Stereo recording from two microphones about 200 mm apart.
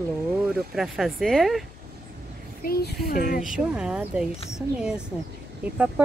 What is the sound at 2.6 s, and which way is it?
Speech, 50° left (ahead or behind).